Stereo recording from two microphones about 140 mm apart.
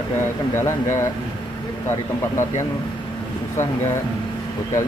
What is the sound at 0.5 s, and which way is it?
Speech, 20° left (ahead or behind).